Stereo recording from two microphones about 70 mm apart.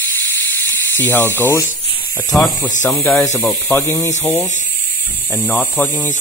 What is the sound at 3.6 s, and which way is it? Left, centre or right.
Speech, left.